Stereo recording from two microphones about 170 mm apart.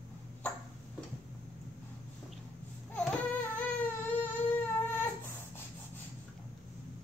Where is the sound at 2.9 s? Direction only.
10° left (ahead or behind).